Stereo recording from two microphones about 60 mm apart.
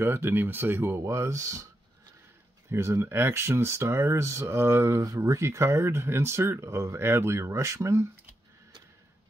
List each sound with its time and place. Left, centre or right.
0.0 s speech: right
2.7 s speech: right
5.0 s speech: right